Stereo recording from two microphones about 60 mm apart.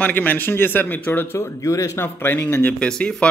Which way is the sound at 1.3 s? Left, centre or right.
Left.